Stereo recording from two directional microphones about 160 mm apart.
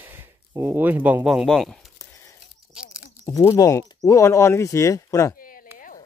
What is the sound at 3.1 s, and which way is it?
Speech, 20° left (ahead or behind).